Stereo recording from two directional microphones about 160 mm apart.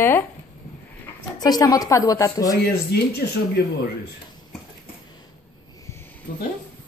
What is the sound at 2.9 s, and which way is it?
Speech, 90° left.